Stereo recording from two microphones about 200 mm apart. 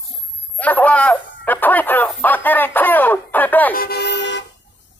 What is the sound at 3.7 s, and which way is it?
Vehicle, 50° left (ahead or behind).